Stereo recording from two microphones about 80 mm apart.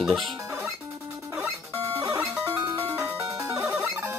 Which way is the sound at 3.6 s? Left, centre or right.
Right.